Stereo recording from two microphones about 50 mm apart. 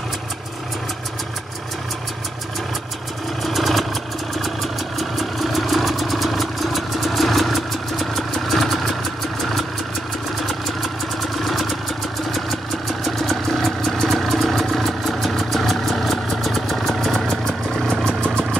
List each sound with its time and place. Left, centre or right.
3.4 s vehicle: centre
4.9 s vehicle: centre
11.3 s vehicle: centre
18.0 s vehicle: centre